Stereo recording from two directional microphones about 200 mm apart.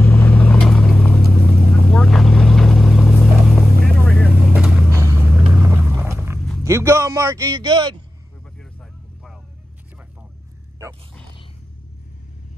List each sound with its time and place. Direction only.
0.0 s vehicle: 10° left (ahead or behind)
4.8 s vehicle: 15° right (ahead or behind)
5.5 s a sound: 10° right (ahead or behind)
6.6 s music: 15° right (ahead or behind)